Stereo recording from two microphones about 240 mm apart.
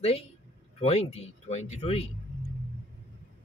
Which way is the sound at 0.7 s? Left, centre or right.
Left.